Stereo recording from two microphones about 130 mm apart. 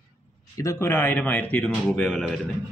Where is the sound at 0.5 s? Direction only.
20° left (ahead or behind); by 2.4 s 5° left (ahead or behind).